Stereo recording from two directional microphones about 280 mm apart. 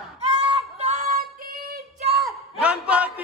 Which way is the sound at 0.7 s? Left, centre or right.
Right.